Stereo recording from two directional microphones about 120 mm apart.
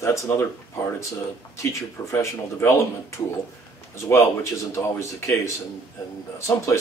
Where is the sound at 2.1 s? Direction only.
25° left (ahead or behind).